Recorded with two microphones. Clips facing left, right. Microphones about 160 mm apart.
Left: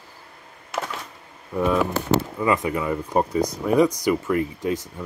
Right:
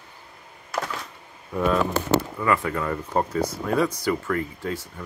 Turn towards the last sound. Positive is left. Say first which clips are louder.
# left 5 dB
turn(degrees=15)  # may be behind; listen again after turning